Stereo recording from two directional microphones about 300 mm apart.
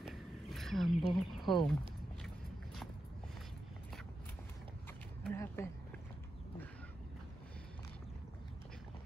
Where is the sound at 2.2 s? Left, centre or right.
Centre.